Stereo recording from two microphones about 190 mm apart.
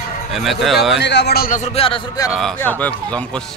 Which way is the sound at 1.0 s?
65° left (ahead or behind).